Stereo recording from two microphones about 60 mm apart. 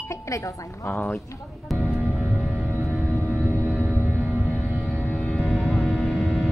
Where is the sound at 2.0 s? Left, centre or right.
Right.